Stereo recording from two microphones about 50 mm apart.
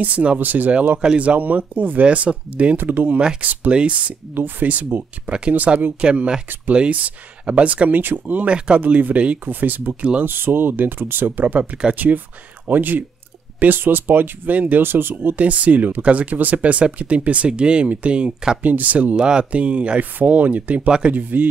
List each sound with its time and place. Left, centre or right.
0.0 s speech: right
0.9 s speech: right
4.4 s speech: right
5.9 s speech: right
8.5 s speech: centre
8.8 s speech: right
9.5 s speech: right
14.8 s speech: right
15.3 s speech: right
18.6 s speech: right